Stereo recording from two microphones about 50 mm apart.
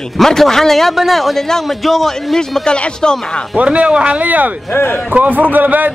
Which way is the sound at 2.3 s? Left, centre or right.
Centre.